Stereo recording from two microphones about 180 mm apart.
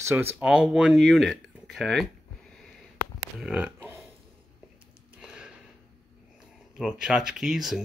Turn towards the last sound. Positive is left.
turn(degrees=0)  # may be behind; listen again after turning